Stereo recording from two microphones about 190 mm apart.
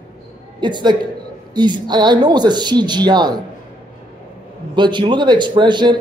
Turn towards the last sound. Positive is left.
turn(degrees=-25)  # may be behind; listen again after turning